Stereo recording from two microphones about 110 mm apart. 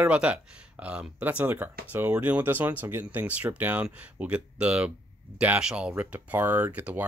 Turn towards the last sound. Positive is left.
turn(degrees=-15)  # may be behind; listen again after turning